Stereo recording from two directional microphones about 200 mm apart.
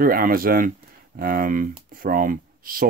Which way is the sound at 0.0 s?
45° right (ahead or behind).